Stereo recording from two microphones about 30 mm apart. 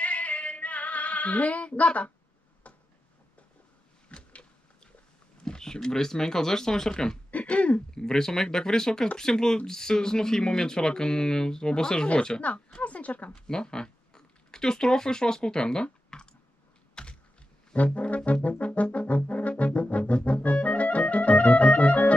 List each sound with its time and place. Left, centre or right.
0.0 s female singing: left
1.9 s brass instrument: left
2.6 s a sound: left
4.1 s a sound: left
5.4 s speech: left
7.2 s throat clearing: left
7.9 s speech: left
12.5 s a sound: left
12.8 s a sound: left
13.3 s speech: left
16.9 s computer keyboard: left
17.9 s brass instrument: left
20.6 s music: left